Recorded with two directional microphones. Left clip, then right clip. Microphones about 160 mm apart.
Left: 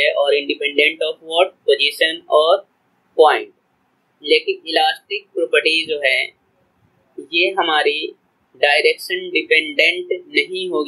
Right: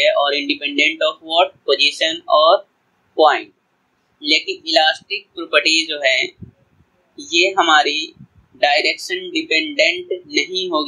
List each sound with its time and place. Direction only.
0.0 s speech: 20° right (ahead or behind)
4.2 s speech: 30° right (ahead or behind)